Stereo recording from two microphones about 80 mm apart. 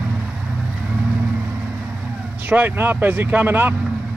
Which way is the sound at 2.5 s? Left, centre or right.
Right.